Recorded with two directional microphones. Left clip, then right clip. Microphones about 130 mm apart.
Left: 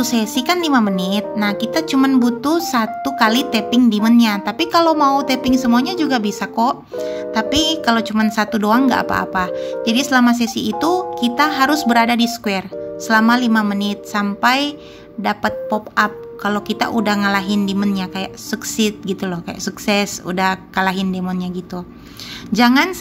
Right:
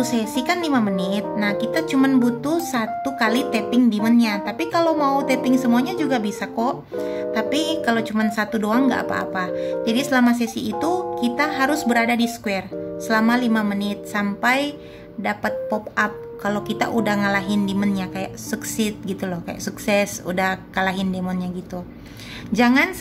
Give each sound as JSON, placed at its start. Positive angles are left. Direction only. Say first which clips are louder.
{"t": 0.0, "sound": "a woman's voice", "louder": "left 3 dB", "side_deg": 30}